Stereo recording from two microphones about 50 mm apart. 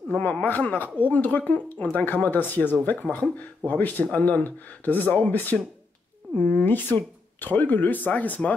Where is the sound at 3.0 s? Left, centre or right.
Left.